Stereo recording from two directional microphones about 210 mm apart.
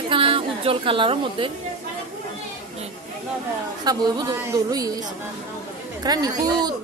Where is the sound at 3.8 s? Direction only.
20° right (ahead or behind).